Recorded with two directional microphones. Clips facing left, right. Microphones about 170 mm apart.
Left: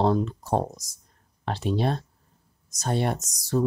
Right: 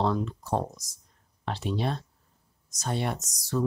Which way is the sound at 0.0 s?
35° left (ahead or behind).